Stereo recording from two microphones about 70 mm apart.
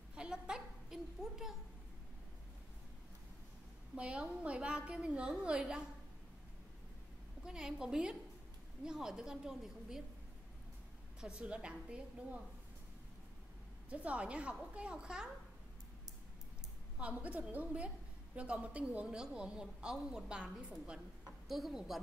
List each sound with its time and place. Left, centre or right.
0.1 s a child's voice: centre
3.9 s a woman's voice: centre
7.4 s a woman's voice: centre
11.1 s a woman's voice: centre
13.8 s a woman's voice: centre
17.0 s a woman's voice: right; by 22.0 s centre